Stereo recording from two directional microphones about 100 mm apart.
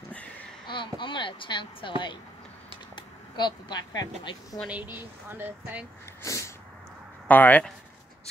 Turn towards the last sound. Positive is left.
turn(degrees=15)  # may be behind; listen again after turning